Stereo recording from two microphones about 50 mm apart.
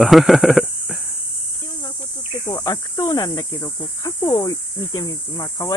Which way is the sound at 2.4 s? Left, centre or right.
Left.